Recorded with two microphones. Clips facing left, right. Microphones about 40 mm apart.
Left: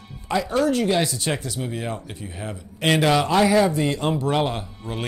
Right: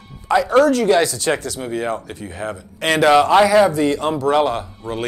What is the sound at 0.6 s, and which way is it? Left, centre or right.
Speech, right.